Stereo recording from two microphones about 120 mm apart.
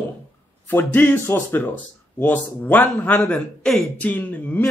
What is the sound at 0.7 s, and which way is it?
Speech, 15° left (ahead or behind).